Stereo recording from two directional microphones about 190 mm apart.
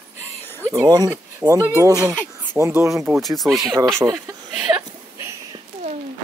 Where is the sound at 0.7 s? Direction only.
20° right (ahead or behind).